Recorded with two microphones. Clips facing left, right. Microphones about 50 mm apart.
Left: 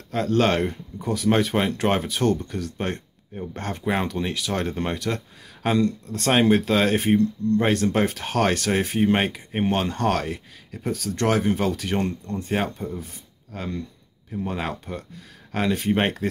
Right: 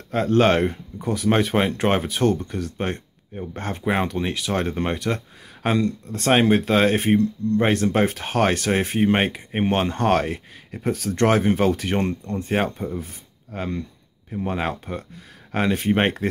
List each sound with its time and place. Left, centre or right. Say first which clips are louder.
0.4 s speech: right 4 dB; centre